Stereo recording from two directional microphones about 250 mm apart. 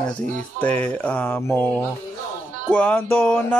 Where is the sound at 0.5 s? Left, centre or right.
Centre.